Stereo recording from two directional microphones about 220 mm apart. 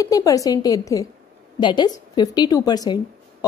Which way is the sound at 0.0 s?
15° left (ahead or behind).